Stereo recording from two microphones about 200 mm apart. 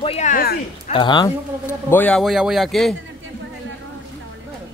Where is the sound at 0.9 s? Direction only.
25° left (ahead or behind); by 2.9 s centre (ahead or behind).